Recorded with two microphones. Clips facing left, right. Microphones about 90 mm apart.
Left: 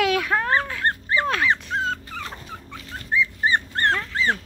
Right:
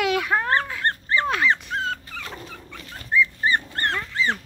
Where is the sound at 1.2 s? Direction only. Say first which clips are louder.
Right 1 dB; 15° right (ahead or behind).